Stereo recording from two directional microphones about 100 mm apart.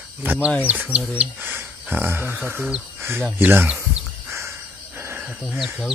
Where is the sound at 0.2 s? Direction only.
20° right (ahead or behind).